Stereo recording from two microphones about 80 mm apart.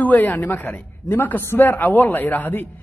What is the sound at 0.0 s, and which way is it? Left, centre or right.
A man's voice, left.